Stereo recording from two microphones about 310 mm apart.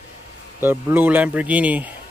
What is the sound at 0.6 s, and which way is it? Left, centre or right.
Speech, centre.